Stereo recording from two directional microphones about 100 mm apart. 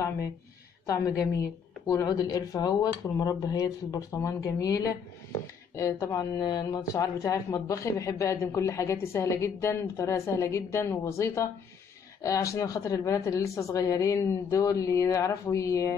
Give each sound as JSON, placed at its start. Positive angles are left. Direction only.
{"t": 0.8, "sound": "a woman's voice", "side_deg": 35}